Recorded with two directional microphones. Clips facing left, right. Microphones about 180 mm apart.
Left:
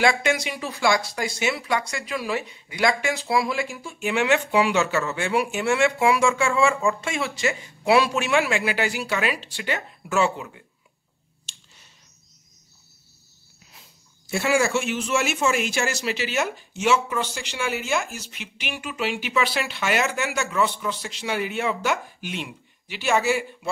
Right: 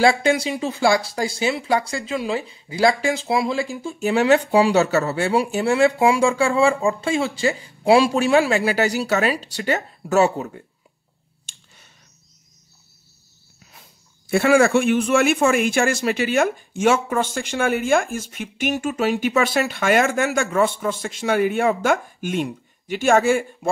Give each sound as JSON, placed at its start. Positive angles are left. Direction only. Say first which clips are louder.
{"t": 0.0, "sound": "speech", "louder": "right 4 dB", "side_deg": -30}
{"t": 11.4, "sound": "a sound", "louder": "right 1 dB", "side_deg": -55}
{"t": 14.2, "sound": "speech", "louder": "right 7 dB", "side_deg": -55}